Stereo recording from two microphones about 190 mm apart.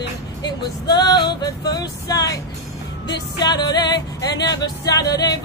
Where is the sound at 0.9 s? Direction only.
20° left (ahead or behind).